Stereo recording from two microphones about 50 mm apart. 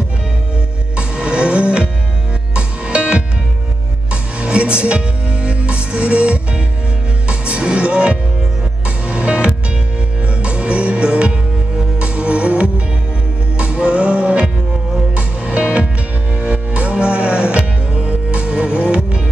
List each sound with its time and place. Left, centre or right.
0.9 s music: right
4.1 s music: right